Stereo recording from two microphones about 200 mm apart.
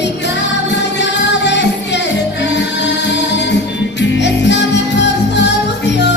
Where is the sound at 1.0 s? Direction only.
60° left (ahead or behind).